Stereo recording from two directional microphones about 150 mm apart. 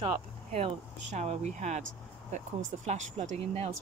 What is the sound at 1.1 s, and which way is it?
Speech, 50° right (ahead or behind).